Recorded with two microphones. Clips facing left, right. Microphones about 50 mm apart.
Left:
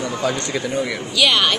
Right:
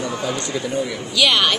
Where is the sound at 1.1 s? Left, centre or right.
Centre.